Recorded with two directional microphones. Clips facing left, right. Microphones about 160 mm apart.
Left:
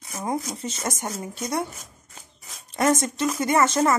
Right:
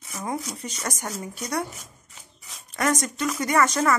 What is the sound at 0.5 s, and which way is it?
Speech, 25° left (ahead or behind).